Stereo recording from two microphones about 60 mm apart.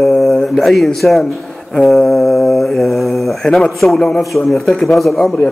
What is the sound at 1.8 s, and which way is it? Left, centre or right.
Mantra, centre.